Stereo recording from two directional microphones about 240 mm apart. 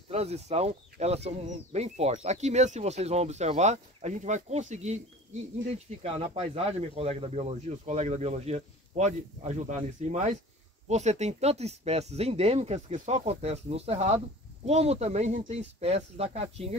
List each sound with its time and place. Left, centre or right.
0.1 s speech: right